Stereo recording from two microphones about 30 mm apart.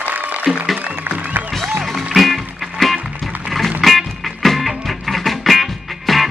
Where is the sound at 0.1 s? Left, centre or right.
Right.